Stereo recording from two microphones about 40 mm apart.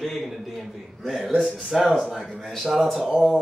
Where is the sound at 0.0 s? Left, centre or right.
Centre.